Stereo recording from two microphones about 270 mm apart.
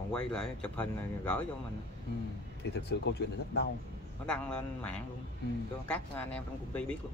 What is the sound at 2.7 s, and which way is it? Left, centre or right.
Speech, left.